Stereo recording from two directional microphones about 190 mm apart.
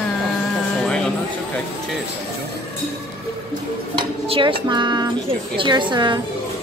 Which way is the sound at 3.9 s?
25° right (ahead or behind).